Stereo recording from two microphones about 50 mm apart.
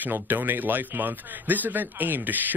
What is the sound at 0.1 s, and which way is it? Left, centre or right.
A man's voice, right.